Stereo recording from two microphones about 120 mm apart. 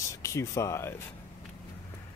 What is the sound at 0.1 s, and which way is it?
Speech, 25° left (ahead or behind).